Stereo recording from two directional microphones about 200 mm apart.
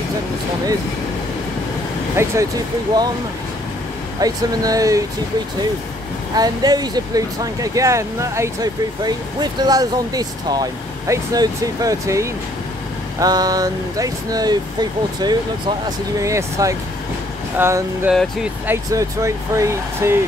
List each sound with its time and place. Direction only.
2.1 s speech: 15° right (ahead or behind)
4.2 s speech: 15° right (ahead or behind)
6.3 s speech: 20° right (ahead or behind)
18.9 s speech: 15° right (ahead or behind)